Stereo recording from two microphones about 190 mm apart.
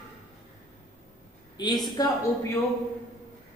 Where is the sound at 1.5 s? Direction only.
20° left (ahead or behind).